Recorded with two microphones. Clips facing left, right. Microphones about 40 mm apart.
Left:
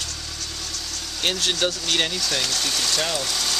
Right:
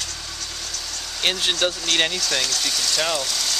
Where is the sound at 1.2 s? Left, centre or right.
Centre.